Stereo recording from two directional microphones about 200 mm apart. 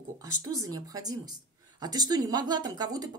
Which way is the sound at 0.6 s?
20° right (ahead or behind).